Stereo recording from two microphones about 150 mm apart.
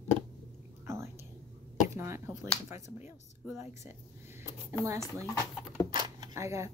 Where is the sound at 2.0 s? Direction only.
20° right (ahead or behind).